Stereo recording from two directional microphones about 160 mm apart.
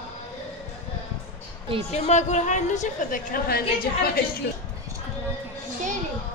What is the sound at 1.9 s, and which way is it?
A woman's voice, 45° left (ahead or behind).